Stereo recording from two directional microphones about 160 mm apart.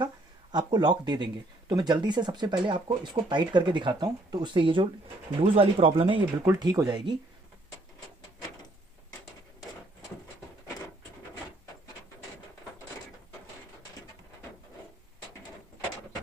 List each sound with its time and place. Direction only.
0.0 s speech: 25° right (ahead or behind)